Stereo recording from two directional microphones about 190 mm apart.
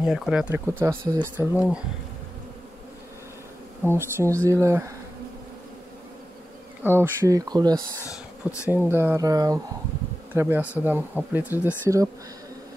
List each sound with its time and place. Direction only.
0.0 s speech: 5° right (ahead or behind)
3.8 s speech: 15° right (ahead or behind)
6.8 s speech: 10° right (ahead or behind)
8.1 s speech: 15° left (ahead or behind)
8.6 s speech: 10° right (ahead or behind)